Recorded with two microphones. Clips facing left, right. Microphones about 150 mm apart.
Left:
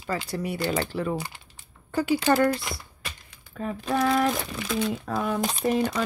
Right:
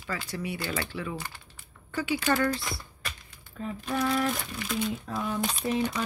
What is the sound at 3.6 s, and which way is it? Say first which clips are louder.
Speech: left 5 dB; 90° left.